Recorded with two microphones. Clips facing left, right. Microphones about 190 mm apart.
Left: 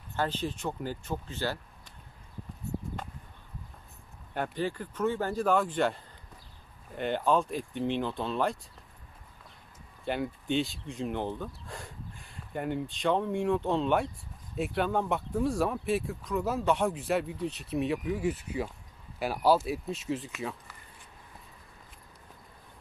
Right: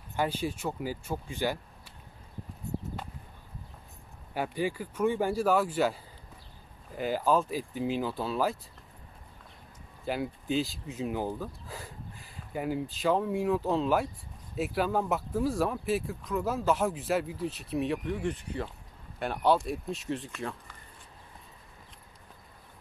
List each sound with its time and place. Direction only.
0.1 s speech: 10° right (ahead or behind)
4.3 s speech: 10° right (ahead or behind)
10.0 s speech: centre (ahead or behind)